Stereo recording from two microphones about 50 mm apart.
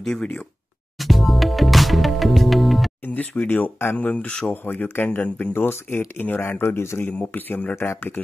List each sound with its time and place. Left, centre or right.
0.0 s speech: centre
0.9 s music: centre
3.2 s speech: left
5.5 s speech: left
6.6 s a man's voice: left
7.1 s speech: left
7.7 s speech: left